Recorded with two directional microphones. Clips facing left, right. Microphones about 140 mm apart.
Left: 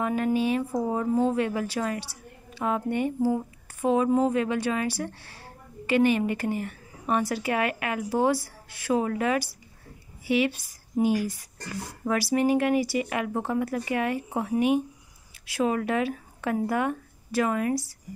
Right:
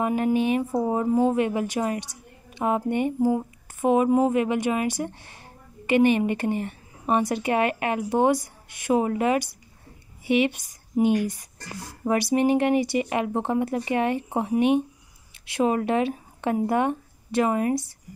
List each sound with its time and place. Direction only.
0.0 s a woman's voice: 20° right (ahead or behind)